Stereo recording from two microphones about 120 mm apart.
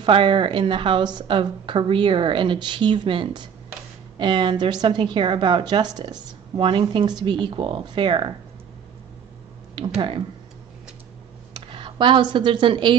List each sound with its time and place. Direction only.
0.0 s a woman's voice: 45° right (ahead or behind)
11.5 s speech: 45° right (ahead or behind)